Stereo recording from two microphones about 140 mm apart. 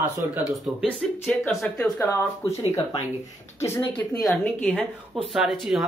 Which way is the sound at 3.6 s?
15° left (ahead or behind).